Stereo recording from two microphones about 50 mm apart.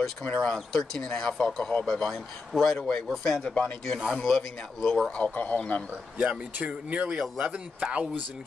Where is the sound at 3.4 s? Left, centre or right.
Left.